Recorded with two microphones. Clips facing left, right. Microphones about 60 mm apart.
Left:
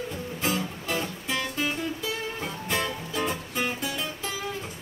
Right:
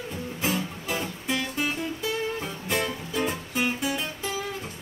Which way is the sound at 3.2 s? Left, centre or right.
Centre.